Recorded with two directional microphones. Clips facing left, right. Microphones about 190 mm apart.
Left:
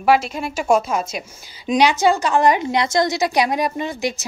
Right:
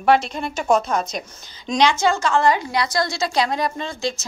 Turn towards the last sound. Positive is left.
turn(degrees=15)  # may be behind; listen again after turning